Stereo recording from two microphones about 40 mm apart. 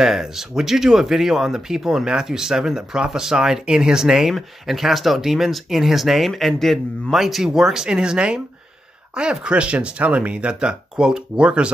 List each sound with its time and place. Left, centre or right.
0.0 s speech: centre; by 11.7 s right